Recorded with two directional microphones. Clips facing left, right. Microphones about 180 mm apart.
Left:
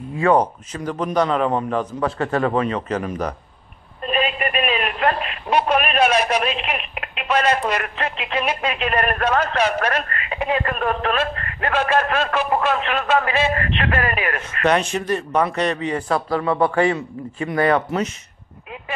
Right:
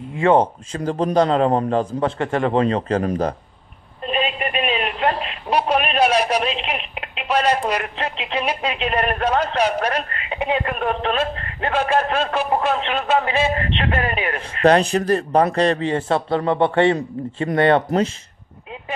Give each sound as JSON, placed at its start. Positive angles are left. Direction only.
{"t": 0.2, "sound": "a man's voice", "side_deg": -25}
{"t": 4.0, "sound": "telephone", "side_deg": -25}
{"t": 5.5, "sound": "a sound", "side_deg": -10}
{"t": 6.0, "sound": "radio", "side_deg": -10}
{"t": 6.4, "sound": "telephone", "side_deg": -25}
{"t": 7.2, "sound": "a man's voice", "side_deg": -10}